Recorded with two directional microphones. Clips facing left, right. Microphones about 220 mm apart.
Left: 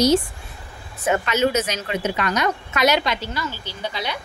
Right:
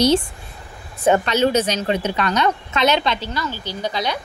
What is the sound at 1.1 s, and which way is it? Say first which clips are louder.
Speech: even; 35° right (ahead or behind).